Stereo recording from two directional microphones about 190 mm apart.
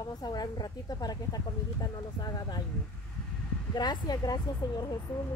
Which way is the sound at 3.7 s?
20° left (ahead or behind).